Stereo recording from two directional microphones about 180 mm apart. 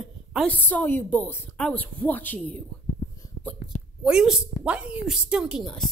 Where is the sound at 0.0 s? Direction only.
Centre (ahead or behind).